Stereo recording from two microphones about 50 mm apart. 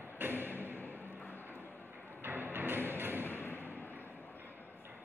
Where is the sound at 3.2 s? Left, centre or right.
Left.